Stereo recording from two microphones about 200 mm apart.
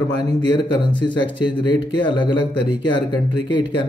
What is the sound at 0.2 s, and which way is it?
Speech, 20° left (ahead or behind).